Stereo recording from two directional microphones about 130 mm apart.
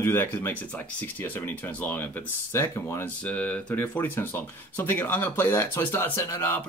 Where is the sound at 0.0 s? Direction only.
20° left (ahead or behind).